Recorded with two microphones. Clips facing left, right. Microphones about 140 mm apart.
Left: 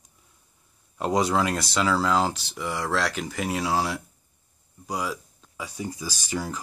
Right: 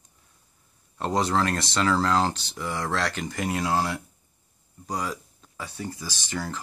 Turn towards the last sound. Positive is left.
turn(degrees=10)  # may be behind; listen again after turning